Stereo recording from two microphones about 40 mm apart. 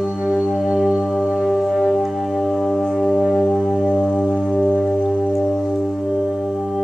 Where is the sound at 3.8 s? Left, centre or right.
Centre.